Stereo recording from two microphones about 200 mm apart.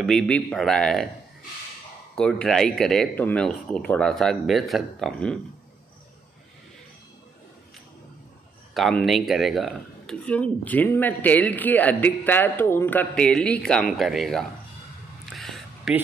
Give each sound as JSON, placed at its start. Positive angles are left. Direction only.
{"t": 0.0, "sound": "speech", "side_deg": 5}
{"t": 2.1, "sound": "speech", "side_deg": 5}
{"t": 8.7, "sound": "speech", "side_deg": 0}
{"t": 15.2, "sound": "a sound", "side_deg": 0}